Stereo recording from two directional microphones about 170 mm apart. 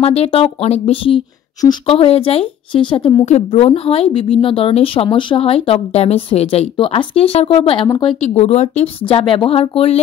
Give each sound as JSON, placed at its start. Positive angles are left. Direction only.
{"t": 0.0, "sound": "speech", "side_deg": 35}